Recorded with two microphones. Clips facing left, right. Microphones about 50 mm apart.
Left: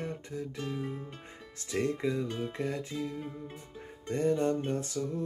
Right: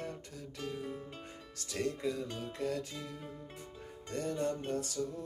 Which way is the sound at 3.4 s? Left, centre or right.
Left.